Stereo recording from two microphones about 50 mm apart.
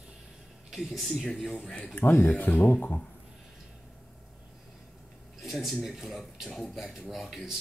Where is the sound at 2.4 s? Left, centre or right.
Left.